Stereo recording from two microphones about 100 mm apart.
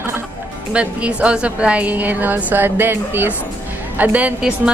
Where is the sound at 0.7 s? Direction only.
10° right (ahead or behind).